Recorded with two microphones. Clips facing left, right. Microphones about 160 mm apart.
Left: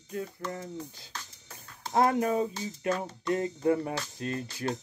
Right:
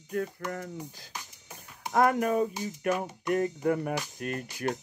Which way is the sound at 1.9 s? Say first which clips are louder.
Right 1 dB; 25° left (ahead or behind).